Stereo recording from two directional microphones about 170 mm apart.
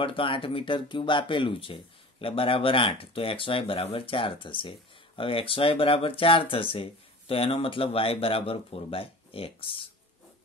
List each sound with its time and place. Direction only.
0.0 s speech: 30° left (ahead or behind)